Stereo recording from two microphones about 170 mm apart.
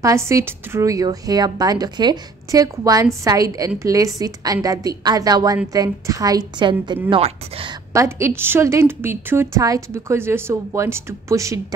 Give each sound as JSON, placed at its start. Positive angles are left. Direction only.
{"t": 0.0, "sound": "a woman's voice", "side_deg": -15}
{"t": 7.9, "sound": "a woman's voice", "side_deg": -15}